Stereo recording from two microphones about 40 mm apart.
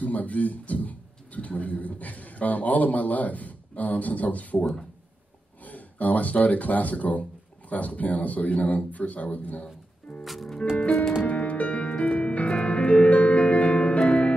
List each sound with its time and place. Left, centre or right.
0.0 s speech: left
10.2 s music: centre
11.2 s music: left